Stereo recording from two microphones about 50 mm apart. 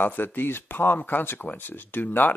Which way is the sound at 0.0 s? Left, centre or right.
Left.